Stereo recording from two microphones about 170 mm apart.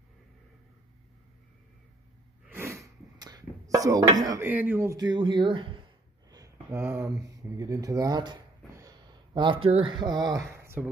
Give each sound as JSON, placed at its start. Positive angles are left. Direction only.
{"t": 2.5, "sound": "a sound", "side_deg": -15}
{"t": 4.2, "sound": "speech", "side_deg": -20}
{"t": 6.3, "sound": "speech", "side_deg": -20}